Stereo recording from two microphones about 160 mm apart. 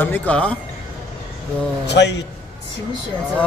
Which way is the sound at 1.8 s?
90° left.